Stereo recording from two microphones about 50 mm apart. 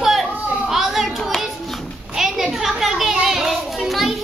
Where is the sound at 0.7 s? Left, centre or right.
Centre.